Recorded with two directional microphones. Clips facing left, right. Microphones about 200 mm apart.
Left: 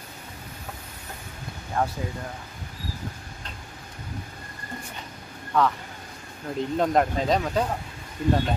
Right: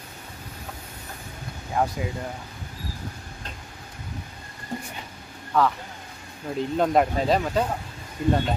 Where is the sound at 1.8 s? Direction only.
15° right (ahead or behind).